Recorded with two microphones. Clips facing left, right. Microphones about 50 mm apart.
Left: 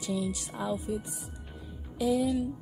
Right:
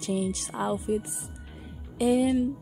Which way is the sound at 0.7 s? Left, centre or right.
Right.